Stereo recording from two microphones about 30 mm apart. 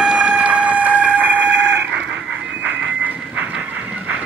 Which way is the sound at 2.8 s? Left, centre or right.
Right.